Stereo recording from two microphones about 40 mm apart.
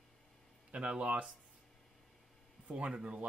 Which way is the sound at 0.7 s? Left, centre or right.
Right.